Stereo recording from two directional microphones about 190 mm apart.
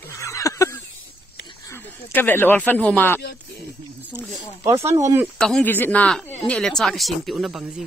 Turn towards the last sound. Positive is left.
turn(degrees=0)  # may be behind; listen again after turning